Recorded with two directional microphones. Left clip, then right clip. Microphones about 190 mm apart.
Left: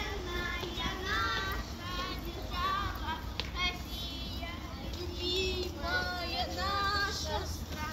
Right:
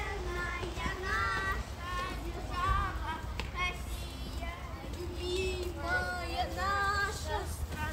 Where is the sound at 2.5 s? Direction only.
10° right (ahead or behind).